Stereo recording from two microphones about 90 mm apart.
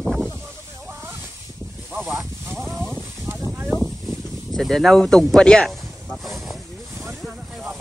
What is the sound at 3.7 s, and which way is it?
Snake, centre (ahead or behind).